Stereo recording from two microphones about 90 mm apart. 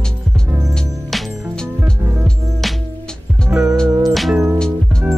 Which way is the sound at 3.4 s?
25° right (ahead or behind).